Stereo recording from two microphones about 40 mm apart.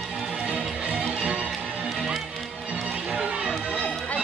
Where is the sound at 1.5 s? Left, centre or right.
Centre.